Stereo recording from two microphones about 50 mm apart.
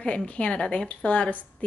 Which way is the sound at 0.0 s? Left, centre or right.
Left.